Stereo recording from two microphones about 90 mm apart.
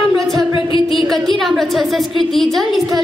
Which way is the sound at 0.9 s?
Centre (ahead or behind).